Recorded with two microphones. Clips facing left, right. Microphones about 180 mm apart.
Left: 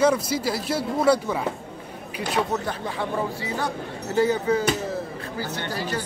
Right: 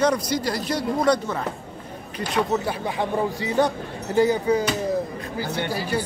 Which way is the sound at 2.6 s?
15° right (ahead or behind).